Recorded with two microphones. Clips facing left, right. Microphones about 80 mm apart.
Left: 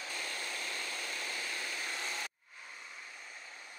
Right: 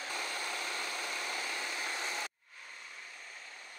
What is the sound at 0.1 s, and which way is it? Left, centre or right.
Vehicle, right.